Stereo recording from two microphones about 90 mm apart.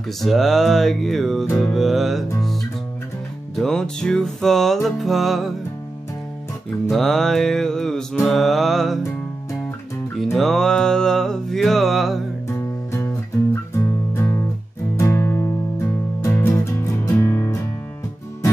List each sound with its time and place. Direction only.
0.2 s music: centre (ahead or behind)
3.5 s music: 5° left (ahead or behind)
6.9 s music: 5° left (ahead or behind)
10.1 s music: centre (ahead or behind)
12.4 s music: 30° left (ahead or behind)